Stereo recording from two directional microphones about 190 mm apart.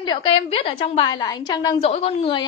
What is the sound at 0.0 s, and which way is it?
A woman's voice, 25° left (ahead or behind).